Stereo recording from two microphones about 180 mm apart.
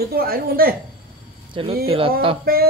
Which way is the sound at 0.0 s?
55° right (ahead or behind).